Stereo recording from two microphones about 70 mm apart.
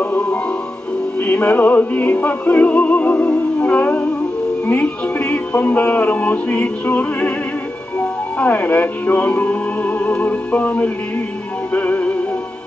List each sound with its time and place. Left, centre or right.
1.2 s music: left
8.0 s speech: left
11.7 s music: left